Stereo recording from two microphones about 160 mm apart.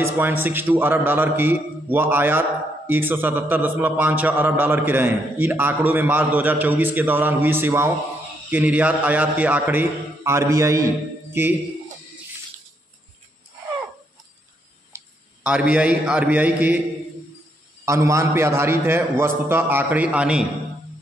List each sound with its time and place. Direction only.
0.0 s a man's voice: 15° right (ahead or behind)
14.9 s tick-tock: 15° right (ahead or behind)
15.4 s a man's voice: 5° right (ahead or behind)
17.8 s a man's voice: 20° right (ahead or behind)